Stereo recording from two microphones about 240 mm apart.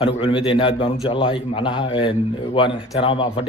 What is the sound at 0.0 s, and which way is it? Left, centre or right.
A man's voice, left.